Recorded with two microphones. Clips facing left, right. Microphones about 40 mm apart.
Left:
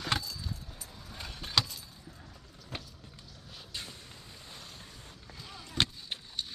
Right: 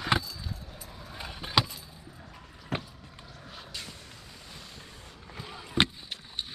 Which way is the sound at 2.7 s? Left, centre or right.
Right.